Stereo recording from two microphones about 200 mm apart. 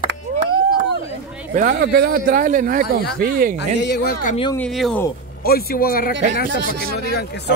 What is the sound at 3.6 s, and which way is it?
Speech, 60° left (ahead or behind).